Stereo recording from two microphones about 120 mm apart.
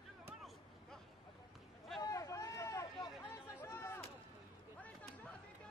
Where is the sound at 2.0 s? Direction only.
30° left (ahead or behind).